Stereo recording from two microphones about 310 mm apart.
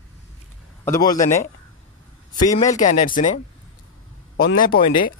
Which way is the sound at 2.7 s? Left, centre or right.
Left.